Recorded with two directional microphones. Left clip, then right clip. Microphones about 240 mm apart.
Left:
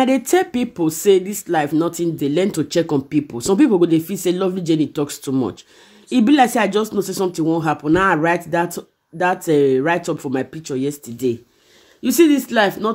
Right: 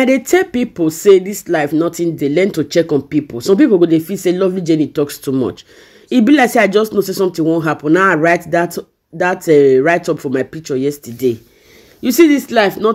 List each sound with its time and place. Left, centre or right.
0.0 s speech: centre